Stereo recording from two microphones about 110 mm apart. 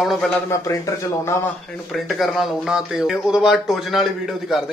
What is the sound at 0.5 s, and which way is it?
Speech, 30° left (ahead or behind).